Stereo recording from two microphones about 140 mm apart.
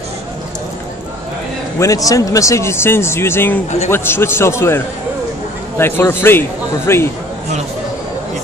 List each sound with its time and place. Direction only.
1.8 s a man's voice: 25° left (ahead or behind)